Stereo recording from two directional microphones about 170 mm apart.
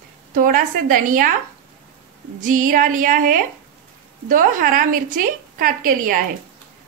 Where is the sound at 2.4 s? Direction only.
50° right (ahead or behind).